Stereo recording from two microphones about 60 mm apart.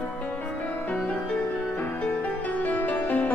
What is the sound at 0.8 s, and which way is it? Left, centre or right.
Music, left.